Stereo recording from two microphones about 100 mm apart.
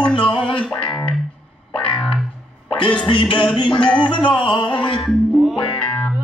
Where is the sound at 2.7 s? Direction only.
60° left (ahead or behind).